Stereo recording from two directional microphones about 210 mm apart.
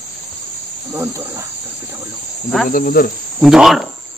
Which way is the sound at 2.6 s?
40° left (ahead or behind).